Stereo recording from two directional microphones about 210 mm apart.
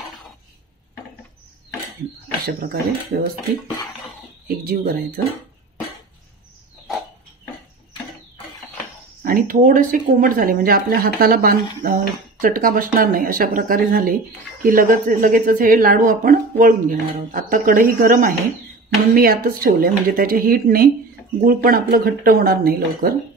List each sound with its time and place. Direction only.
2.4 s speech: 45° right (ahead or behind)
4.5 s speech: 45° right (ahead or behind)
9.2 s speech: 40° right (ahead or behind)